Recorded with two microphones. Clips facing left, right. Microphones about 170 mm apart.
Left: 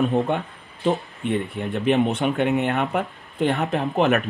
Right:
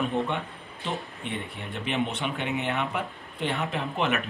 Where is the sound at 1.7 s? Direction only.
45° left (ahead or behind).